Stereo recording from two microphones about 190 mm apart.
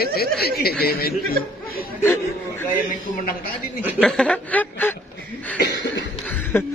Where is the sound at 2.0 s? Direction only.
15° left (ahead or behind).